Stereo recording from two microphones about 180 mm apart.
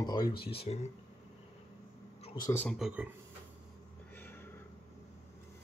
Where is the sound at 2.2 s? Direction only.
25° left (ahead or behind).